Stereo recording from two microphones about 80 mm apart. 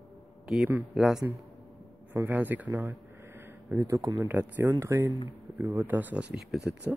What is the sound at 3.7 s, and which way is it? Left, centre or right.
Speech, right.